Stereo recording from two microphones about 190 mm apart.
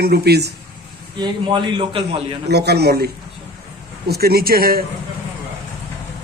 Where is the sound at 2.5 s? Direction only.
60° right (ahead or behind).